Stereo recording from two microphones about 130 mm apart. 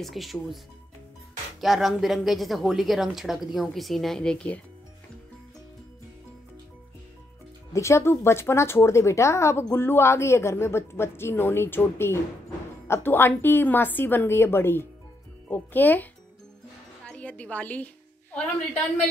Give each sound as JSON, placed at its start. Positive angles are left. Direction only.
{"t": 0.0, "sound": "speech", "side_deg": 0}
{"t": 1.6, "sound": "speech", "side_deg": 0}
{"t": 7.7, "sound": "a woman's voice", "side_deg": 20}